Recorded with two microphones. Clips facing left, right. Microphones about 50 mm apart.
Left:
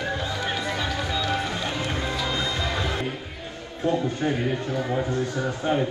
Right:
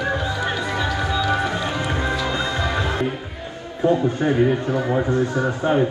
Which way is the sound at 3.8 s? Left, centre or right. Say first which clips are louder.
Right 6 dB; right.